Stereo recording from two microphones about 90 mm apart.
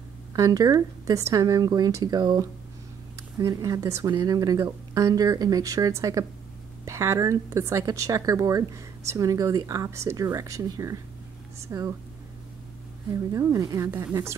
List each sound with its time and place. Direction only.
0.3 s speech: 45° right (ahead or behind)
13.1 s speech: 40° right (ahead or behind)